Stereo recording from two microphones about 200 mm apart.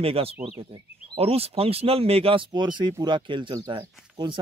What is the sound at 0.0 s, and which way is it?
Speech, 30° right (ahead or behind).